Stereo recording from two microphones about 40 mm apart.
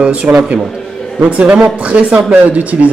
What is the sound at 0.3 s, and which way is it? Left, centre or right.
A man's voice, centre.